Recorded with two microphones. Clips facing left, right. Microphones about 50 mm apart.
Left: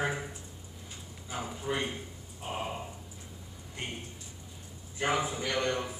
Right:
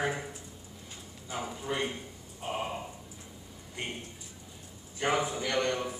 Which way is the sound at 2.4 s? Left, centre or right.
Centre.